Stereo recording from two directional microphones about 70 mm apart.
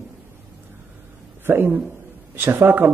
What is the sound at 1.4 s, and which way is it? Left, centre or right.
A man's voice, right.